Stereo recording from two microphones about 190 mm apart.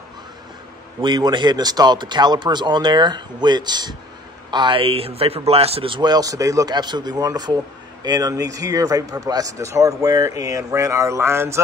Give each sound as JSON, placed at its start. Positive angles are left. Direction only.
{"t": 1.0, "sound": "speech", "side_deg": -25}